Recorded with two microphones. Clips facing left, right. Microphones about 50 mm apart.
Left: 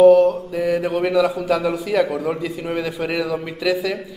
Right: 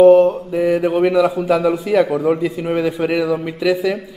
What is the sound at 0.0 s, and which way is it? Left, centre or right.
A man's voice, centre.